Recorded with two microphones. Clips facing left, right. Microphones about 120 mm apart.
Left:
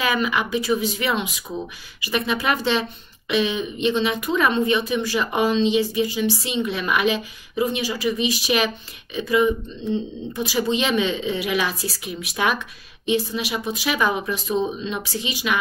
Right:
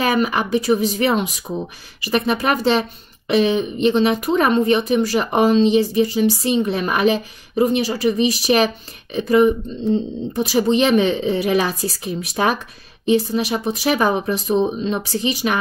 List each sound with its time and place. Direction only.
0.0 s speech: 40° right (ahead or behind)